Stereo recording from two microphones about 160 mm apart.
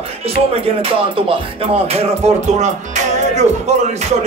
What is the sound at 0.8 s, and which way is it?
Music, 35° right (ahead or behind).